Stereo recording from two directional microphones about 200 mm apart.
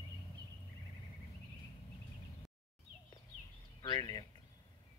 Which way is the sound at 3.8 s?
20° left (ahead or behind).